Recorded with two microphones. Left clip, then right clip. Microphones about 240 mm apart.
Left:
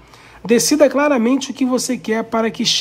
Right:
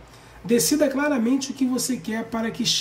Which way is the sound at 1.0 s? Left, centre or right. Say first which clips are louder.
Left 7 dB; left.